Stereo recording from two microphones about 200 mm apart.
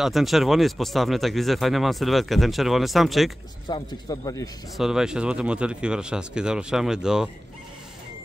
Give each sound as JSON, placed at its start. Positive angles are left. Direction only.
{"t": 0.0, "sound": "speech", "side_deg": 0}
{"t": 3.6, "sound": "a man's voice", "side_deg": 20}
{"t": 4.7, "sound": "speech", "side_deg": 0}